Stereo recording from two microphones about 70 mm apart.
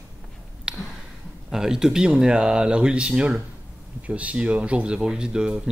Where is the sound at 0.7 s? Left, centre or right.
Centre.